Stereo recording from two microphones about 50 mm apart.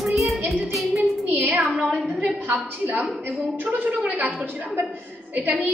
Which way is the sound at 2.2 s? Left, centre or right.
Right.